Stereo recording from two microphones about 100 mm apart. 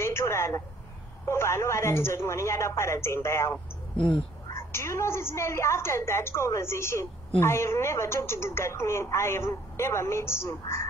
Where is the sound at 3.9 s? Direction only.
55° left (ahead or behind).